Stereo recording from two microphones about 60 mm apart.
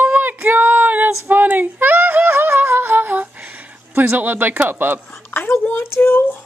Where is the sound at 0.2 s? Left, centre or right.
Right.